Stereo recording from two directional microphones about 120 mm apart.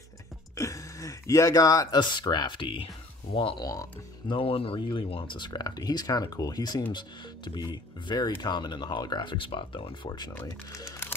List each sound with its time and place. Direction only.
0.6 s speech: 25° left (ahead or behind); by 3.6 s 45° left (ahead or behind)
3.6 s speech: 25° left (ahead or behind)
4.3 s speech: 50° left (ahead or behind)
10.4 s speech: 25° left (ahead or behind)